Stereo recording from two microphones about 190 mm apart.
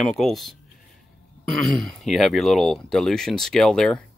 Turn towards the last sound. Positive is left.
turn(degrees=5)  # may be behind; listen again after turning